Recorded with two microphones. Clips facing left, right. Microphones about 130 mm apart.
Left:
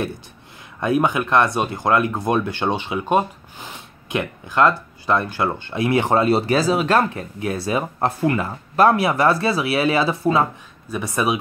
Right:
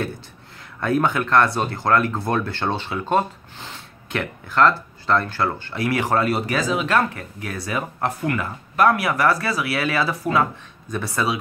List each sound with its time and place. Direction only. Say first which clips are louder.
0.7 s speech: left 1 dB; 15° left (ahead or behind); by 7.0 s 35° left (ahead or behind)
7.2 s speech: left 6 dB; 25° left (ahead or behind)